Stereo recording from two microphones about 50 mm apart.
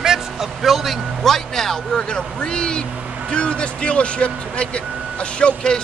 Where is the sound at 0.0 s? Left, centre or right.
Centre.